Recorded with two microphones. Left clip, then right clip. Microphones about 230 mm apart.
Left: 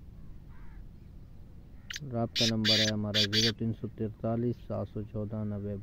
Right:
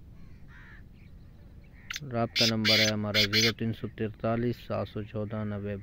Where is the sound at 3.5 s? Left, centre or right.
Centre.